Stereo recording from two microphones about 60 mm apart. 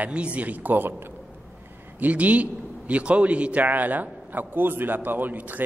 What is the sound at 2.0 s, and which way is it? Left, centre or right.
A man's voice, right.